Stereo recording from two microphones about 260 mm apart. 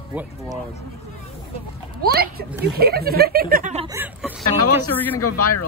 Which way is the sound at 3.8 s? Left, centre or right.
Centre.